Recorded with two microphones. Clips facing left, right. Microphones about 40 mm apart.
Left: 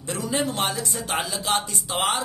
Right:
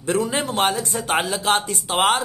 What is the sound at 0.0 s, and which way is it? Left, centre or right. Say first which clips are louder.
Speech: right 4 dB; right.